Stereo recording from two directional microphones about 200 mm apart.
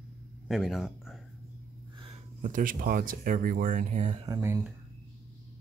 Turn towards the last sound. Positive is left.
turn(degrees=-15)  # may be behind; listen again after turning